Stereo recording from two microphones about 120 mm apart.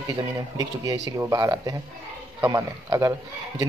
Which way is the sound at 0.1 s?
30° right (ahead or behind).